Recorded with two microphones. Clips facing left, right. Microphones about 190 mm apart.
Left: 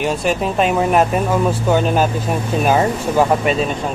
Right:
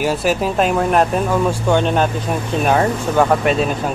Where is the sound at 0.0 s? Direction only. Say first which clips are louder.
Right 1 dB; 5° right (ahead or behind).